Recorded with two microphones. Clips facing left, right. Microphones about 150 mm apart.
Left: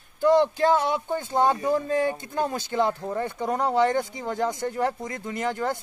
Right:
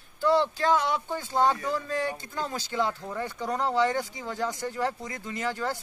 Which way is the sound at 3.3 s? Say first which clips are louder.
Left 2 dB; 20° left (ahead or behind).